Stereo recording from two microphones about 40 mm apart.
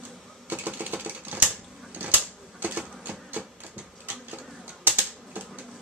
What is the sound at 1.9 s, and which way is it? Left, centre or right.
Typewriter, right.